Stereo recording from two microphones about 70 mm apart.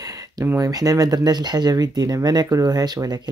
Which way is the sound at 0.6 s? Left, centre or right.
Right.